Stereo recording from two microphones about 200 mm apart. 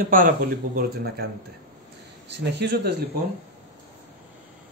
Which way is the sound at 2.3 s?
60° right (ahead or behind).